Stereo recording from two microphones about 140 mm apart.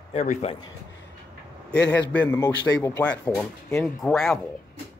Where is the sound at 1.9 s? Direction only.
10° left (ahead or behind).